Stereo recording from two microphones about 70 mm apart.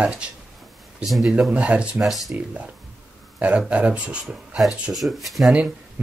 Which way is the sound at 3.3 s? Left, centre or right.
Centre.